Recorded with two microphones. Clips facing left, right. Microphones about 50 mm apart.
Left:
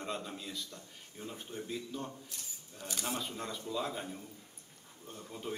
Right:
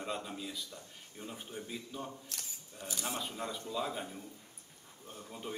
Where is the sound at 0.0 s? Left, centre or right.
Centre.